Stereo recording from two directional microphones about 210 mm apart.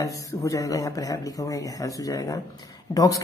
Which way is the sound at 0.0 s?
15° left (ahead or behind).